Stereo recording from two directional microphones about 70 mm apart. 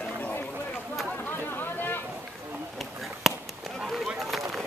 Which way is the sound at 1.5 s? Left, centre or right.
Left.